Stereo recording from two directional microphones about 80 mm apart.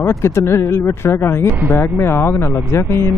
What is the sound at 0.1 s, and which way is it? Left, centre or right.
Speech, left.